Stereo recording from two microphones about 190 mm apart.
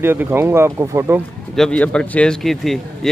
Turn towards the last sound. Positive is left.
turn(degrees=0)  # may be behind; listen again after turning